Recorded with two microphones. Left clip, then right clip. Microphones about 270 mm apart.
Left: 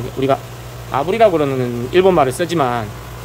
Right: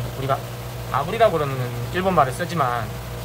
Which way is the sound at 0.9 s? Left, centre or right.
Left.